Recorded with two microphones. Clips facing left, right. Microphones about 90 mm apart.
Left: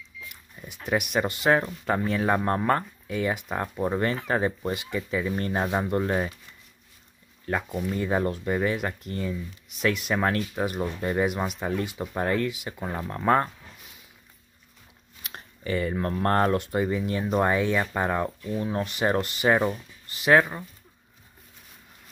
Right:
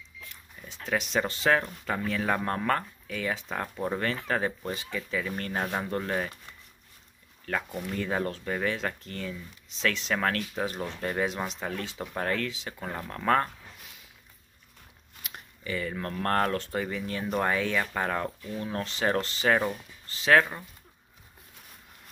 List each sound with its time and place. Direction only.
0.3 s a sound: 15° left (ahead or behind)
1.1 s speech: 15° left (ahead or behind)
8.0 s speech: 15° left (ahead or behind)
9.8 s speech: 10° left (ahead or behind)
15.3 s speech: 35° left (ahead or behind); by 20.6 s 10° left (ahead or behind)